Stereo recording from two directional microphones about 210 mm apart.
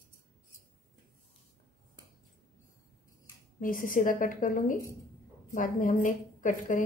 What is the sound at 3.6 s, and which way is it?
Speech, 40° left (ahead or behind).